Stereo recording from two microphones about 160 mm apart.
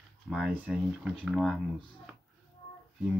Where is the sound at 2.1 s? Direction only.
5° right (ahead or behind).